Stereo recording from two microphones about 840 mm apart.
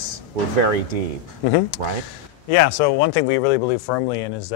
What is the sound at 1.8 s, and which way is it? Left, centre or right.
Speech, right.